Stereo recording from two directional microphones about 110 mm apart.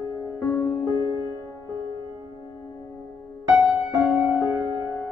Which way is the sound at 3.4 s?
Centre (ahead or behind).